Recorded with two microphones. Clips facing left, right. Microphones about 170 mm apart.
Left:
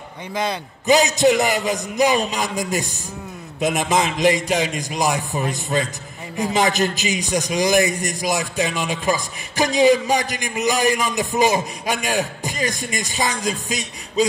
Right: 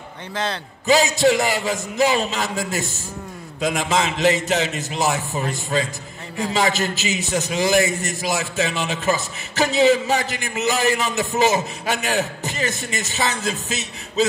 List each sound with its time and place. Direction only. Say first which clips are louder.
0.3 s a man's voice: left 2 dB; 15° left (ahead or behind)